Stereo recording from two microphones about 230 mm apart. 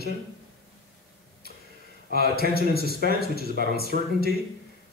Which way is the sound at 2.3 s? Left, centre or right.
Left.